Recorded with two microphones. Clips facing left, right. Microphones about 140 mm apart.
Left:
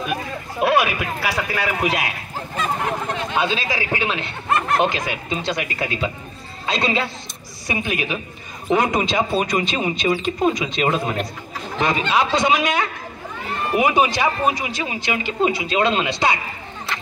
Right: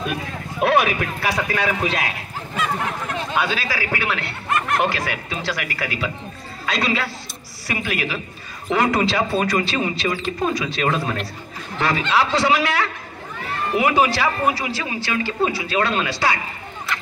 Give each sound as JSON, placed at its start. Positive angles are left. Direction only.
{"t": 0.6, "sound": "speech", "side_deg": 5}
{"t": 3.3, "sound": "a man's voice", "side_deg": 25}